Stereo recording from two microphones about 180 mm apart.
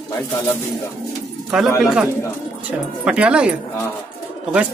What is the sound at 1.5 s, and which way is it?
Speech, centre (ahead or behind).